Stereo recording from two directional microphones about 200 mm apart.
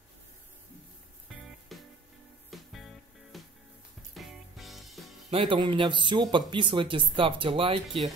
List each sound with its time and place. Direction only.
1.3 s music: centre (ahead or behind)
5.3 s speech: 25° right (ahead or behind)